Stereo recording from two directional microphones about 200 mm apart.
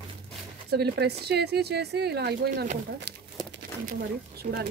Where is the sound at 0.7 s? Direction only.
55° right (ahead or behind).